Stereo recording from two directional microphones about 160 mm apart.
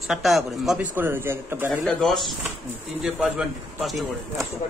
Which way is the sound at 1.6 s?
Centre (ahead or behind).